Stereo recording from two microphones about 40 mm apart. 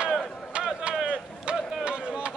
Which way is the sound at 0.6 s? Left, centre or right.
Right.